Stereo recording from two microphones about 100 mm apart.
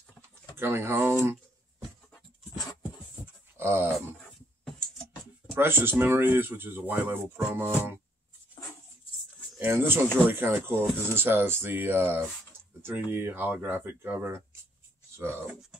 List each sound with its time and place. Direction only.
0.6 s speech: 25° right (ahead or behind)
3.5 s a sound: 25° right (ahead or behind)
5.6 s speech: 20° right (ahead or behind)
9.6 s speech: 20° right (ahead or behind)